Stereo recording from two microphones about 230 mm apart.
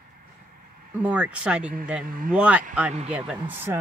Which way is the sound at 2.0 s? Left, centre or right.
Right.